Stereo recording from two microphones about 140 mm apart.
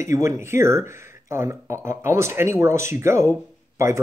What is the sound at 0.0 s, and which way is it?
Speech, 20° right (ahead or behind).